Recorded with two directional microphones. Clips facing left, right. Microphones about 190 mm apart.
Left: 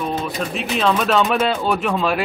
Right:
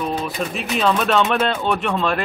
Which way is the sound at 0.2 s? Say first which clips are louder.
Left 1 dB; centre (ahead or behind).